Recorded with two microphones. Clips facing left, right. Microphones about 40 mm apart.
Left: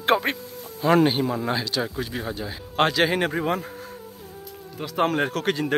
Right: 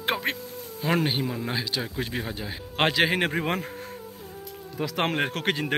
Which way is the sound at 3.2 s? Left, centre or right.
Right.